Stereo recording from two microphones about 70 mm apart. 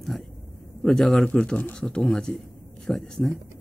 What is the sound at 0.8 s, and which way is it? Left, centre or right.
Speech, centre.